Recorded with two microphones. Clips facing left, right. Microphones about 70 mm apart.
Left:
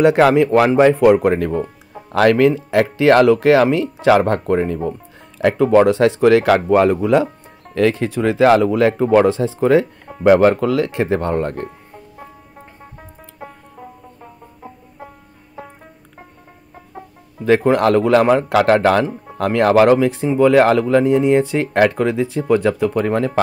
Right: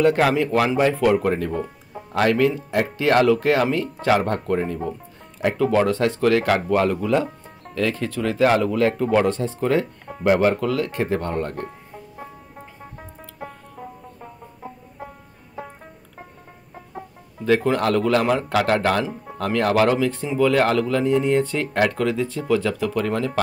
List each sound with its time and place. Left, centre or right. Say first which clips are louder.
0.0 s speech: left 6 dB; left
7.7 s music: left 6 dB; centre
8.0 s speech: left 5 dB; left
9.1 s speech: left 6 dB; left
9.6 s speech: left 8 dB; left
10.2 s speech: left 6 dB; left
11.1 s speech: left 6 dB; left
17.5 s speech: left 6 dB; left
22.4 s speech: left 7 dB; left